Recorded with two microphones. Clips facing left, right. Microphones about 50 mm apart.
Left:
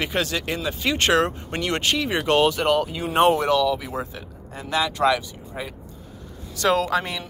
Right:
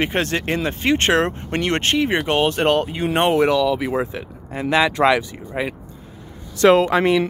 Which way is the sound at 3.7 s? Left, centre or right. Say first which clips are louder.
Right 5 dB; right.